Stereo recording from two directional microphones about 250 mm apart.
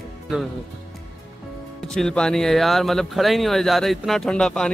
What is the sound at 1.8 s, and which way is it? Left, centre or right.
Speech, centre.